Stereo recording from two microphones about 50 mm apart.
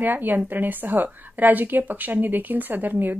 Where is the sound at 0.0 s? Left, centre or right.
Right.